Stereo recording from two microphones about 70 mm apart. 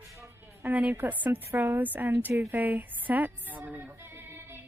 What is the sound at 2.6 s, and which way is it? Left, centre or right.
A woman's voice, right.